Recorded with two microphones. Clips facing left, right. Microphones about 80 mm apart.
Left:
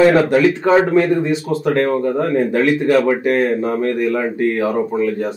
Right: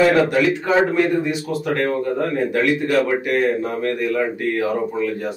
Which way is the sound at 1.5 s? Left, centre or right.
Left.